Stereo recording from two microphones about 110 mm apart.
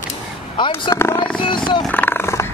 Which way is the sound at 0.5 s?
45° left (ahead or behind).